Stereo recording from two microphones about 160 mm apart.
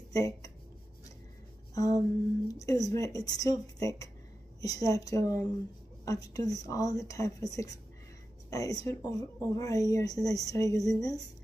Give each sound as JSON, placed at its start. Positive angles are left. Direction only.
{"t": 0.1, "sound": "speech", "side_deg": 20}
{"t": 1.8, "sound": "speech", "side_deg": 20}